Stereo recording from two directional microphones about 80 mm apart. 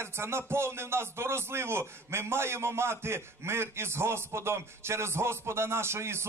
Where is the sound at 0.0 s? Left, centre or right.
Right.